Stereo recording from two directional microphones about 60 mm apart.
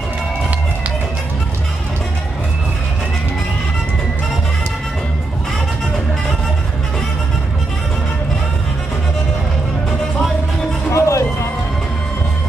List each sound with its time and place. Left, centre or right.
10.9 s music: left